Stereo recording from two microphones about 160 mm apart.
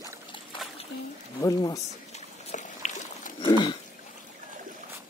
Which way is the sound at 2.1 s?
50° left (ahead or behind).